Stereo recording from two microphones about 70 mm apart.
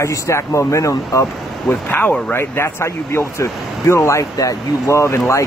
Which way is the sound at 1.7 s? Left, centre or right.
Left.